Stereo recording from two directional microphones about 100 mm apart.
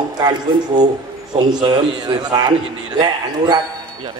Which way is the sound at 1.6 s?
45° right (ahead or behind).